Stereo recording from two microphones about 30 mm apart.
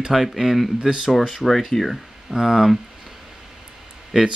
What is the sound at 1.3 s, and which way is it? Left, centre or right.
Speech, centre.